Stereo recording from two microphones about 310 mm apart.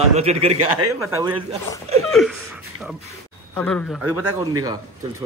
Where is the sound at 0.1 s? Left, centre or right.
Centre.